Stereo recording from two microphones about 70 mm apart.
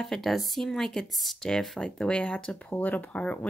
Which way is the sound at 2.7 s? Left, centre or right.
Left.